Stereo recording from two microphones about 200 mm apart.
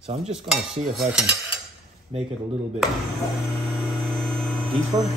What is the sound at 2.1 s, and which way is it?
Speech, 25° right (ahead or behind).